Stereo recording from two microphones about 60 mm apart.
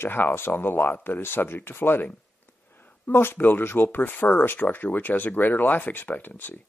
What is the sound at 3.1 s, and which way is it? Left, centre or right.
Speech, left.